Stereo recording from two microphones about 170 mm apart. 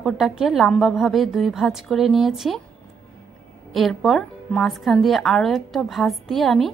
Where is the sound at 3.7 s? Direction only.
Centre (ahead or behind).